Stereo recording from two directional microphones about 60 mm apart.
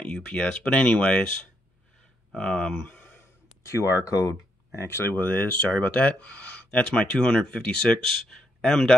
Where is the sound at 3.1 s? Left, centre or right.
Left.